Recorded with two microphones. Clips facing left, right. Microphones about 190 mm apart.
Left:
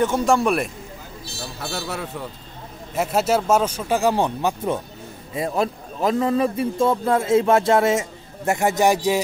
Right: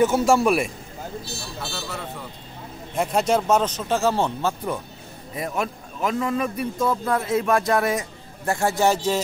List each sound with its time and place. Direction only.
0.0 s a man's voice: 5° right (ahead or behind)
1.6 s speech: 70° left (ahead or behind)
2.9 s speech: 5° left (ahead or behind)
5.3 s a man's voice: 30° left (ahead or behind); by 9.2 s 15° left (ahead or behind)